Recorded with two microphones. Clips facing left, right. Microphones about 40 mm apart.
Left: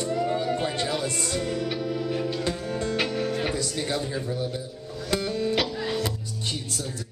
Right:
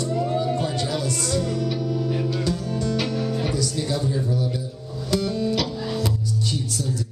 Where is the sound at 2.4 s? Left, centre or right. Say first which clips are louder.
Right 3 dB; left.